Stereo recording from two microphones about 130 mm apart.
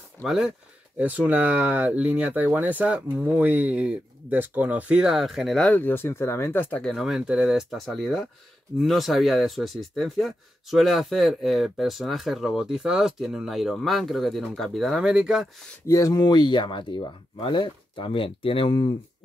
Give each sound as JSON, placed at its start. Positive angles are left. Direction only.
{"t": 0.2, "sound": "speech", "side_deg": -5}
{"t": 5.7, "sound": "speech", "side_deg": 15}
{"t": 15.9, "sound": "speech", "side_deg": 30}